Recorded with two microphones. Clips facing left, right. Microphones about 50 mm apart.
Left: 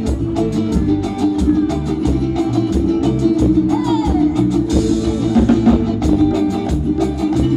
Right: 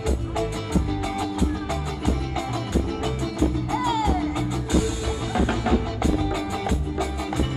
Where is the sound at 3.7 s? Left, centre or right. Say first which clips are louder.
Left 7 dB; centre.